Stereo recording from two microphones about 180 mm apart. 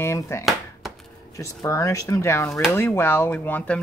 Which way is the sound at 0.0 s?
15° left (ahead or behind).